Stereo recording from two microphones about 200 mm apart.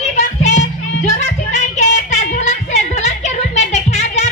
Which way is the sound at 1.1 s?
35° left (ahead or behind).